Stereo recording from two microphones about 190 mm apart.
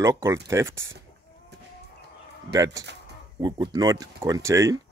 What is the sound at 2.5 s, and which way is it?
Speech, 20° right (ahead or behind).